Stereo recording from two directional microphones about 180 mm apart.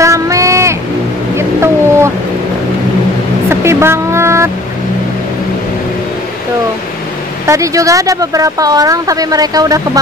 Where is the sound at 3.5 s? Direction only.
15° right (ahead or behind).